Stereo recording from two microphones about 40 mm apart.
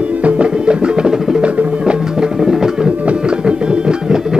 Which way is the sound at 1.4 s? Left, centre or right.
Right.